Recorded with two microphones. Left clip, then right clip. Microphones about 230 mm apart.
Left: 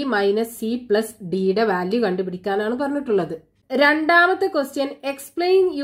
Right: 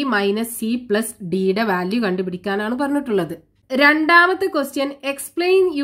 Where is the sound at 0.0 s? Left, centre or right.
Right.